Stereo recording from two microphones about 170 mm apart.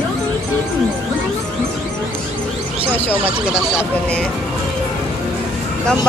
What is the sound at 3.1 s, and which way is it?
Speech, 5° right (ahead or behind).